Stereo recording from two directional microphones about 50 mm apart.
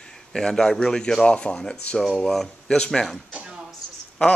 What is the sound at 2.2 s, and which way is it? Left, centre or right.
Speech, centre.